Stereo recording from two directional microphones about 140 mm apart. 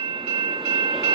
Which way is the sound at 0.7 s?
35° right (ahead or behind).